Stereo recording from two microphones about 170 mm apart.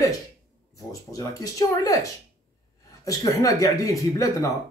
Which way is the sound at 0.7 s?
20° left (ahead or behind).